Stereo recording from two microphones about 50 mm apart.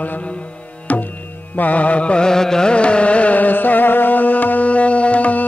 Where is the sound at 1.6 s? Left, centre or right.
Left.